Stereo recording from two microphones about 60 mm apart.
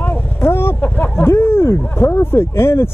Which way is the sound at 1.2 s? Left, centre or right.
Left.